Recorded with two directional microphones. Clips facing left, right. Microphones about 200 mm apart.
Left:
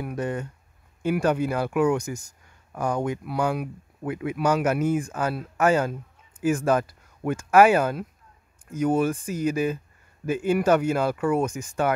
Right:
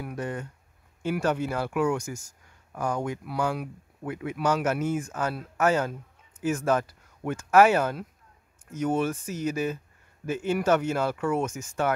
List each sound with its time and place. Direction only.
0.0 s speech: 20° left (ahead or behind)